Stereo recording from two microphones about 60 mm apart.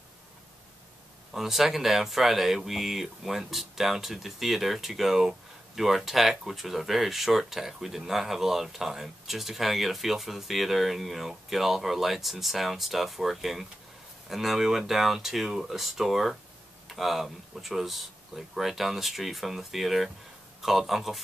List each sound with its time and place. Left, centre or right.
1.3 s speech: centre